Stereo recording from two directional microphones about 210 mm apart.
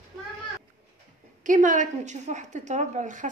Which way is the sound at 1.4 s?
40° right (ahead or behind).